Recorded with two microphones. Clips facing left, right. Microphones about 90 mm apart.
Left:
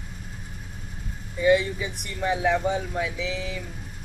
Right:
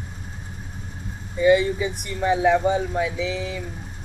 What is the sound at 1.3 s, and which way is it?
Speech, 5° right (ahead or behind).